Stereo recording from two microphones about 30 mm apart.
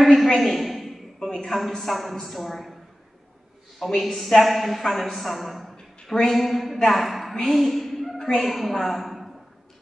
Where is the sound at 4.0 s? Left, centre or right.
Centre.